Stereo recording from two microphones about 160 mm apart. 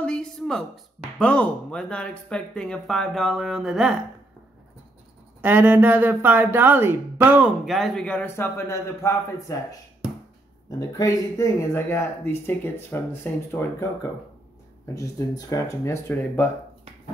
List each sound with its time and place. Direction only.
0.0 s a sound: 5° left (ahead or behind)
1.1 s speech: 5° left (ahead or behind)
5.4 s speech: 10° right (ahead or behind)
7.6 s speech: centre (ahead or behind); by 9.8 s 20° left (ahead or behind)
10.9 s speech: 20° left (ahead or behind)
15.0 s speech: 20° left (ahead or behind)